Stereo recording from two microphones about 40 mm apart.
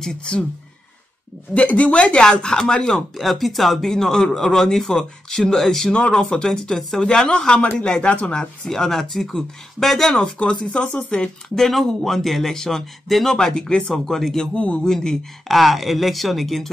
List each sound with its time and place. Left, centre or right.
0.0 s speech: centre
1.5 s speech: left
3.2 s speech: centre
3.9 s speech: centre
8.6 s speech: centre
10.2 s speech: left
11.1 s speech: centre
14.0 s speech: centre